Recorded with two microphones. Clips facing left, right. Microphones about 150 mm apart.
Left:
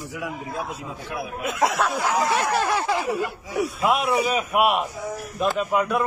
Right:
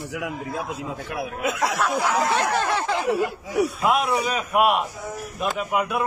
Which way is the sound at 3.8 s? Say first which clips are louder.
Left 4 dB; 5° left (ahead or behind).